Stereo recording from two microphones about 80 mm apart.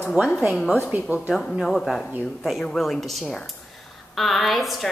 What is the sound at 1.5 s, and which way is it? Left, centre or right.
A woman's voice, centre.